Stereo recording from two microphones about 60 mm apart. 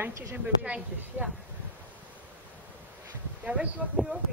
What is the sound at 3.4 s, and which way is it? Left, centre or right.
Speech, right.